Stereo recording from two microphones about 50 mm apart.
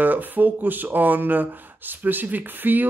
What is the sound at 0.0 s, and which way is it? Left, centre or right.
Speech, right.